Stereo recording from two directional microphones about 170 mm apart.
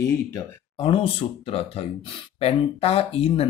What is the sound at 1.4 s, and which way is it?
Speech, 35° left (ahead or behind).